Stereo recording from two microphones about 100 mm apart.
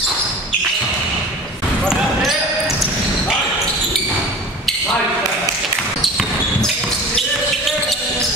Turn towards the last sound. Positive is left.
turn(degrees=0)  # may be behind; listen again after turning